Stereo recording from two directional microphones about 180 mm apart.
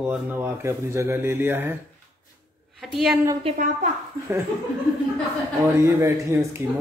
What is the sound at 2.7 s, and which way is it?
Speech, centre (ahead or behind).